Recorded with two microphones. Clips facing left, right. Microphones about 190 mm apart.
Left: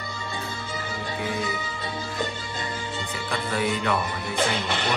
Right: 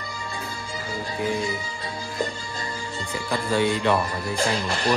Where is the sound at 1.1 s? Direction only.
30° right (ahead or behind).